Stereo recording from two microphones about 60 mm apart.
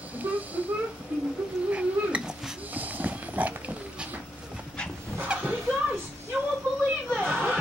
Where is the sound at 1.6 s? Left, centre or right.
Right.